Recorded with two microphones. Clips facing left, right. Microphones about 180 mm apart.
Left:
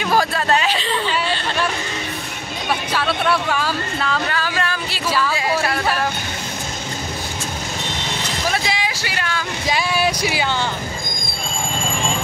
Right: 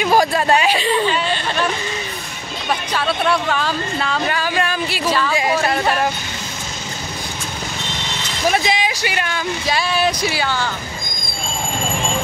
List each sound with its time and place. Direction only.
0.0 s speech: 15° right (ahead or behind)
2.9 s speech: centre (ahead or behind)
4.3 s music: 15° right (ahead or behind)
5.3 s speech: 15° right (ahead or behind)
8.5 s a sound: 20° right (ahead or behind)
9.7 s speech: 15° left (ahead or behind)